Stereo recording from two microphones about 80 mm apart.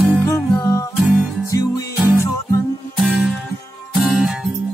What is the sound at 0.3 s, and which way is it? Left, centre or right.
Music, left.